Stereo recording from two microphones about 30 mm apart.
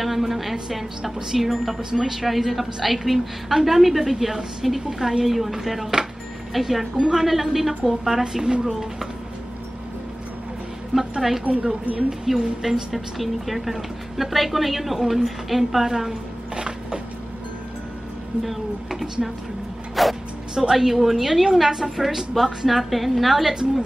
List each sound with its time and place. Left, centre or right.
0.0 s a woman's voice: centre; by 5.2 s right
5.2 s a woman's voice: centre
11.0 s a woman's voice: centre
11.4 s speech: right
12.1 s speech: centre
12.9 s a woman's voice: centre
16.5 s a sound: right
19.2 s a woman's voice: centre
23.4 s speech: right